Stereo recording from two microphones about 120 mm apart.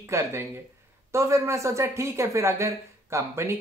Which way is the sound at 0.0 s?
20° right (ahead or behind).